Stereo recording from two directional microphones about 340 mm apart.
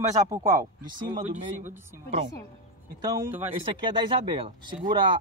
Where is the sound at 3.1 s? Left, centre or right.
Centre.